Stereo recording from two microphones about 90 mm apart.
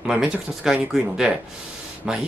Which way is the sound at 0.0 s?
10° right (ahead or behind).